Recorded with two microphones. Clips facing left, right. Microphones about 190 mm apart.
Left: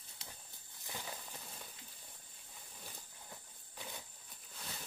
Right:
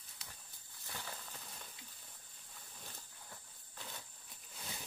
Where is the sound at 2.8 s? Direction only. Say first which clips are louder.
Left 2 dB; 15° left (ahead or behind).